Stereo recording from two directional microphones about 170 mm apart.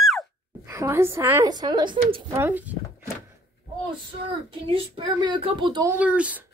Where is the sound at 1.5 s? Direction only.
25° right (ahead or behind).